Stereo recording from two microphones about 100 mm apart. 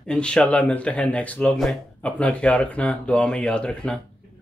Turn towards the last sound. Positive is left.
turn(degrees=10)  # may be behind; listen again after turning